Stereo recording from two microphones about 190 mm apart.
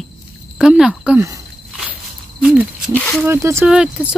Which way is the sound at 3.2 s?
15° right (ahead or behind).